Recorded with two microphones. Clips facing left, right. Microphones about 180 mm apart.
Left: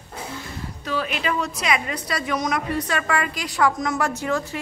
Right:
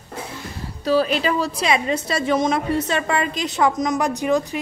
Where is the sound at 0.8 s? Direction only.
35° right (ahead or behind).